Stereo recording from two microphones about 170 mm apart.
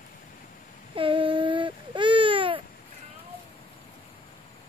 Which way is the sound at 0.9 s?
30° right (ahead or behind).